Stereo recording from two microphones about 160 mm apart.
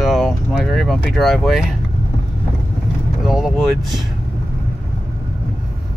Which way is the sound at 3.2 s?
Centre (ahead or behind).